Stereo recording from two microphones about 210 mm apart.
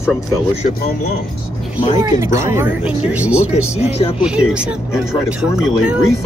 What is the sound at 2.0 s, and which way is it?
Speech, 15° right (ahead or behind).